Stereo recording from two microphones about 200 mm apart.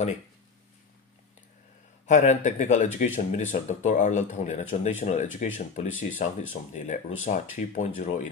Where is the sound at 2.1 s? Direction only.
40° left (ahead or behind).